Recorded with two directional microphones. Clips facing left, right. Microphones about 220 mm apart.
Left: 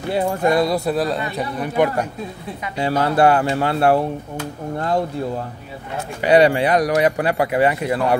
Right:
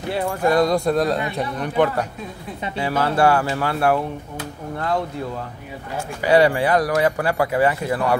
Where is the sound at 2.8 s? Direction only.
25° left (ahead or behind).